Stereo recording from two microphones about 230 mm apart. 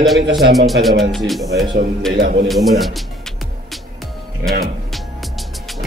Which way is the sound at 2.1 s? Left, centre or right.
Right.